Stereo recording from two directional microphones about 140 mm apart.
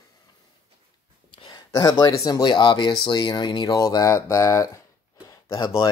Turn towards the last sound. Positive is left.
turn(degrees=25)  # may be behind; listen again after turning